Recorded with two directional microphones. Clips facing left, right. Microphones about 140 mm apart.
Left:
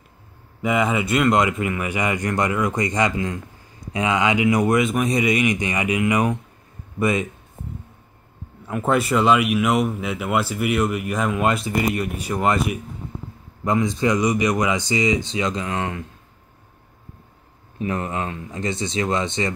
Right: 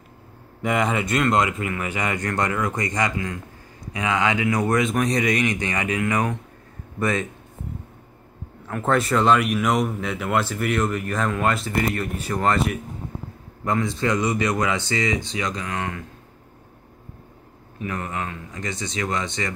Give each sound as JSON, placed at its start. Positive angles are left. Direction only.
{"t": 0.6, "sound": "speech", "side_deg": 5}
{"t": 8.6, "sound": "speech", "side_deg": 10}
{"t": 17.7, "sound": "speech", "side_deg": 25}